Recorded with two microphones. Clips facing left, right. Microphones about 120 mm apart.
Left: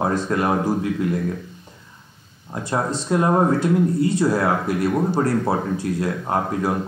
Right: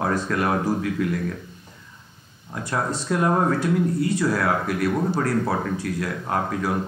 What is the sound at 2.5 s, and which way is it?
Speech, 25° left (ahead or behind).